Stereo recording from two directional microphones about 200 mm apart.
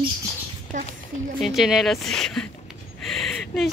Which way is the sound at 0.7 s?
40° right (ahead or behind).